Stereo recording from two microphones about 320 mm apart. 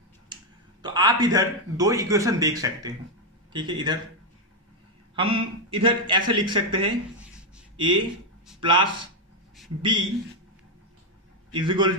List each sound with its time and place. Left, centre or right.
0.3 s finger snapping: centre
0.8 s a man's voice: centre
5.1 s a man's voice: centre
11.5 s a man's voice: centre